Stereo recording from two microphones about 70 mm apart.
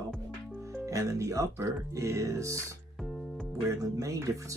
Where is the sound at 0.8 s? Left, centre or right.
Right.